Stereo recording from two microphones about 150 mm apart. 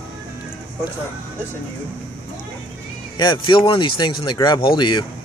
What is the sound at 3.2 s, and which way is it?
Speech, 30° left (ahead or behind).